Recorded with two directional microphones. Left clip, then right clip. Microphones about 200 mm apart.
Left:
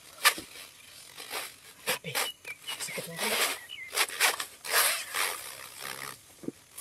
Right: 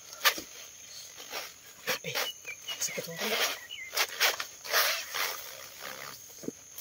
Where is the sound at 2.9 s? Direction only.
55° left (ahead or behind).